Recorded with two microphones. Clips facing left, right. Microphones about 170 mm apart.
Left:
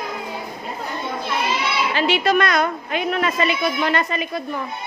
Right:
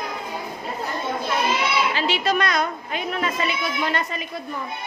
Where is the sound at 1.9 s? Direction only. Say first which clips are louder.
Left 4 dB; 60° left (ahead or behind).